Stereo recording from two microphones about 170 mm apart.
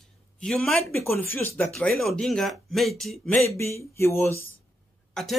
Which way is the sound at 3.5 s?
15° left (ahead or behind).